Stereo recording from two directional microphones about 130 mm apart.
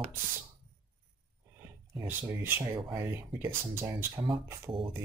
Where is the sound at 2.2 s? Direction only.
15° right (ahead or behind).